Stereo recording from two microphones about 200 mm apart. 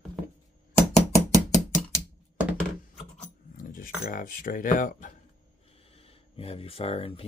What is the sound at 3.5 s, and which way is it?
Keys jangling, 45° left (ahead or behind).